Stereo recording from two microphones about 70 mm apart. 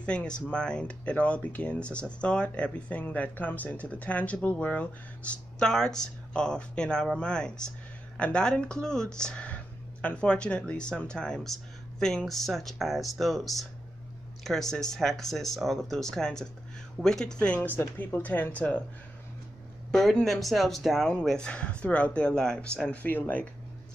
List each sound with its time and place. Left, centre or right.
0.0 s speech: centre
19.9 s speech: centre
23.0 s speech: left